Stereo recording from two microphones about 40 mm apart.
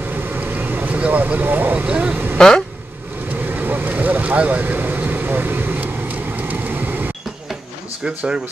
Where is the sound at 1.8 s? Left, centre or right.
Right.